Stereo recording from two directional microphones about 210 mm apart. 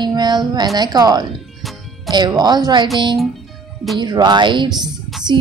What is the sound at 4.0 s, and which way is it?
Speech, 20° right (ahead or behind).